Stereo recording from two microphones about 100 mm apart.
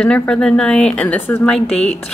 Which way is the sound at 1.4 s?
5° left (ahead or behind).